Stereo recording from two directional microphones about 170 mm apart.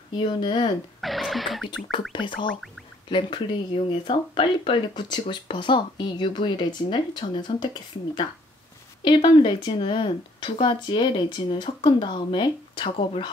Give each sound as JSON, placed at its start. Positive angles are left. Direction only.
{"t": 0.1, "sound": "speech", "side_deg": 25}
{"t": 1.0, "sound": "music", "side_deg": 0}
{"t": 2.1, "sound": "speech", "side_deg": 30}